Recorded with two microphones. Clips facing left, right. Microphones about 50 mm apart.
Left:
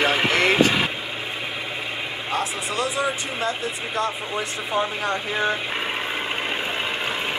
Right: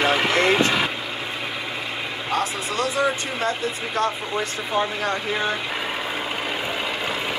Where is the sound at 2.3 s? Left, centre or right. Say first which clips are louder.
Right 1 dB; left.